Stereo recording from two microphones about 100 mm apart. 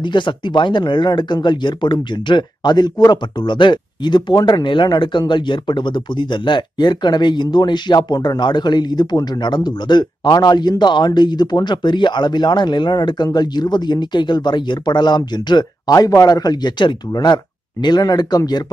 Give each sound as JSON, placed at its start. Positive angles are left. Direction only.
{"t": 0.0, "sound": "speech", "side_deg": 50}